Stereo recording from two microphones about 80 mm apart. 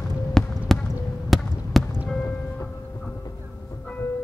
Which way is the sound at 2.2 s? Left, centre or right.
Centre.